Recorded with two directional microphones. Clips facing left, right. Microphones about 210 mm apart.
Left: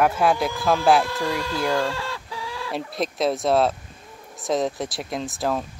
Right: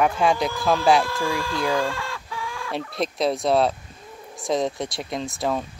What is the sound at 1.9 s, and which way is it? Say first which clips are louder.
Chicken: left 1 dB; 25° left (ahead or behind).